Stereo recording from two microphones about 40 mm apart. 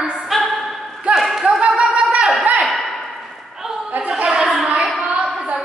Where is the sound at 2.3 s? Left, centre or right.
Right.